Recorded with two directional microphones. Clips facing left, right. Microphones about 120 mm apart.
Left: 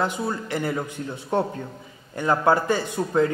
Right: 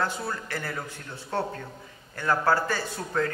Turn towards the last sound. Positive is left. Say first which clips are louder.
# left 7 dB
turn(degrees=20)  # may be behind; listen again after turning